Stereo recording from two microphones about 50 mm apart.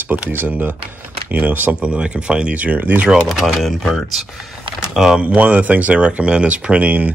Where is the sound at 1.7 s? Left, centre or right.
Right.